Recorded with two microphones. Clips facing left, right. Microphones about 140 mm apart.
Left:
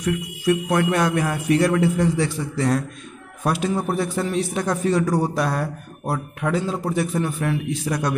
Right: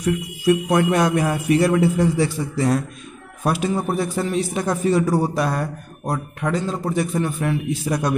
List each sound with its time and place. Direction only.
0.0 s a man's voice: 15° right (ahead or behind)
7.9 s speech: 20° right (ahead or behind)